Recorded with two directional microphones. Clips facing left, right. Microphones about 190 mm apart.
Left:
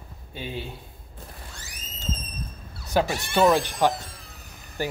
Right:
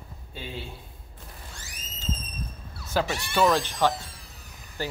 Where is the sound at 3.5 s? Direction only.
10° left (ahead or behind).